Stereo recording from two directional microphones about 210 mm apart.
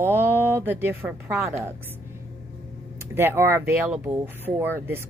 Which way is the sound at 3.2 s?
10° right (ahead or behind).